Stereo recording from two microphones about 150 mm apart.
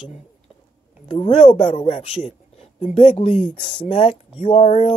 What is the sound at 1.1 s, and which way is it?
Speech, 35° left (ahead or behind).